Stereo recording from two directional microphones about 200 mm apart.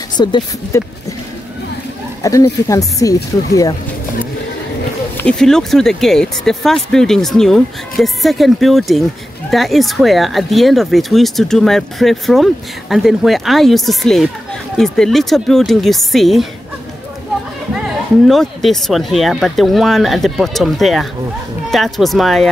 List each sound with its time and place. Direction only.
0.2 s speech: 20° left (ahead or behind)
2.2 s speech: 15° left (ahead or behind)
5.1 s speech: 5° left (ahead or behind)
18.2 s speech: centre (ahead or behind)